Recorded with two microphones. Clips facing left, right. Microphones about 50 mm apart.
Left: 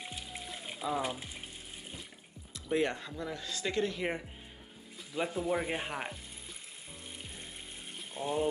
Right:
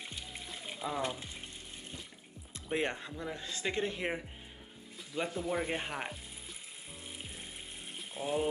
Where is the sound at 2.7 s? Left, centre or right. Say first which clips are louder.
Left 3 dB; right.